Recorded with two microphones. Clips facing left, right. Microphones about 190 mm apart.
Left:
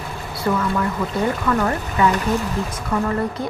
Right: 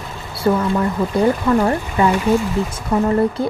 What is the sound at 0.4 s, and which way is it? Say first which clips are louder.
A woman's voice: right 4 dB; 30° right (ahead or behind).